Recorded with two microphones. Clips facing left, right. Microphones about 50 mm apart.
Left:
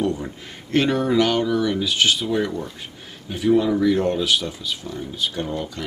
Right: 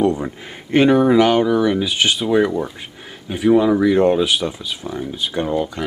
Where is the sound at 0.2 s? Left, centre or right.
Centre.